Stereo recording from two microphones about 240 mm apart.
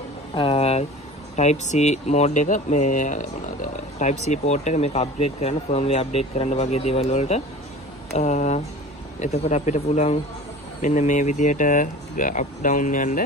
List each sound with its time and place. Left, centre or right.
0.3 s speech: left
4.3 s speech: left